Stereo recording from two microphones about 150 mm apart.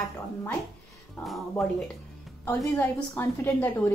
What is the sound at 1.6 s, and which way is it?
Speech, centre (ahead or behind).